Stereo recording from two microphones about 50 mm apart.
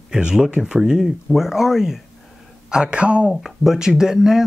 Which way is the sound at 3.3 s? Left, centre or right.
Centre.